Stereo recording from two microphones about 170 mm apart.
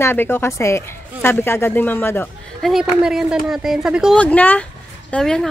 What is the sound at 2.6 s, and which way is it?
A woman's voice, centre (ahead or behind).